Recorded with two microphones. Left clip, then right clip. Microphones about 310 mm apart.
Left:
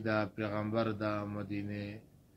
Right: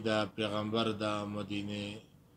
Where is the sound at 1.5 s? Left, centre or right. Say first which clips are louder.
Right 2 dB; right.